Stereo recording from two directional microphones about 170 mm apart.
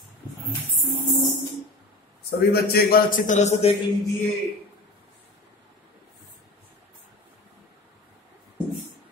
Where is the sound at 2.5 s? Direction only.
60° left (ahead or behind); by 3.7 s 45° left (ahead or behind).